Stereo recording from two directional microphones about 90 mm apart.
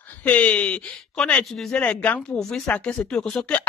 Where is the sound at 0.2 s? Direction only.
15° left (ahead or behind).